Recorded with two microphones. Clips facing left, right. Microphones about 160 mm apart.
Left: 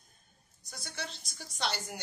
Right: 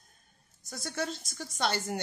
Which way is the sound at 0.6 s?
45° right (ahead or behind).